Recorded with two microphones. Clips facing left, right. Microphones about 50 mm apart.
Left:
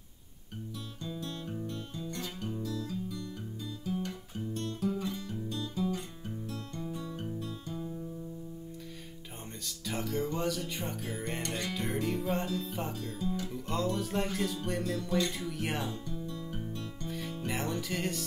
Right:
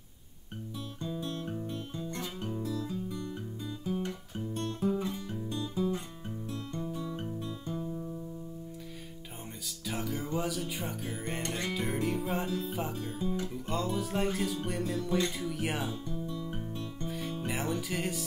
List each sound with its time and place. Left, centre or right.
1.0 s music: centre
2.0 s guitar: right
2.5 s music: centre
3.8 s guitar: centre
4.6 s music: right
9.8 s music: centre
11.4 s speech: right
11.7 s music: centre
13.0 s speech: right
13.5 s music: centre